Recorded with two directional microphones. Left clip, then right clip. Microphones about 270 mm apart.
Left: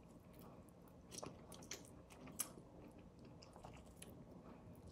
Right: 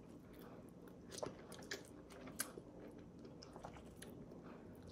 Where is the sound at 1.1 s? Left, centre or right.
Centre.